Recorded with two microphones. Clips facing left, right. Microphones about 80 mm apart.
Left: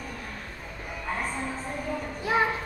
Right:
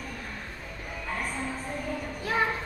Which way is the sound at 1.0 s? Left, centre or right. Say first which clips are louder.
Left 2 dB; centre.